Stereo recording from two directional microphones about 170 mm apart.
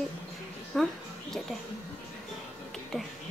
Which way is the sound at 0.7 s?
Centre (ahead or behind).